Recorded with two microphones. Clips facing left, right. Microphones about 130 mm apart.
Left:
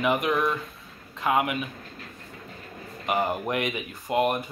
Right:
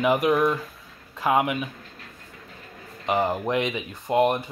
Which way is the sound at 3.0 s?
25° right (ahead or behind).